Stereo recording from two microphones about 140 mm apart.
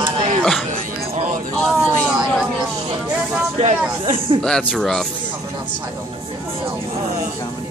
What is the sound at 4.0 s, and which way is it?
Speech, 40° right (ahead or behind).